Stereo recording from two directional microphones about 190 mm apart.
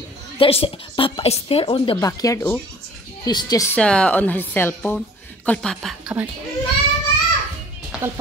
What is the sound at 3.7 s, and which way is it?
A woman's voice, 5° left (ahead or behind).